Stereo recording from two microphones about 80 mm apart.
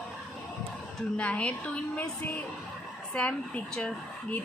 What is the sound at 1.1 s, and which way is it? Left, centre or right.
A woman's voice, centre.